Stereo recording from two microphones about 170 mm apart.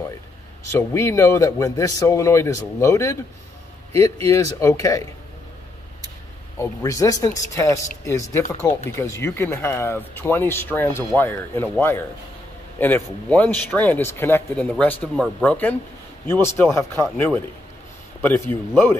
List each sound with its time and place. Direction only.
0.7 s speech: 15° left (ahead or behind)
6.6 s speech: 15° left (ahead or behind)